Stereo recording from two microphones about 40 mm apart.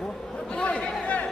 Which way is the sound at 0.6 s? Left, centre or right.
Left.